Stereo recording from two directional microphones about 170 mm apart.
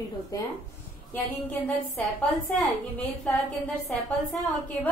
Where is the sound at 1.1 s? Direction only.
10° left (ahead or behind).